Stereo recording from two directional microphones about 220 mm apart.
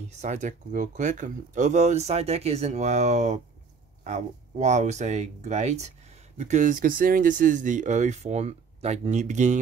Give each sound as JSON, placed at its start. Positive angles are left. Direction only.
{"t": 0.2, "sound": "speech", "side_deg": -35}